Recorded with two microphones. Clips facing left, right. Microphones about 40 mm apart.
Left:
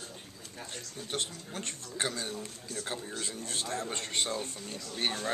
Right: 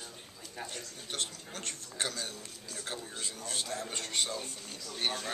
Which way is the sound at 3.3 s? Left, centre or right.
Left.